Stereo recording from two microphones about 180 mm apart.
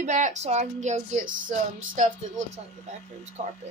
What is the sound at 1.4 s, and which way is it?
Music, 90° right.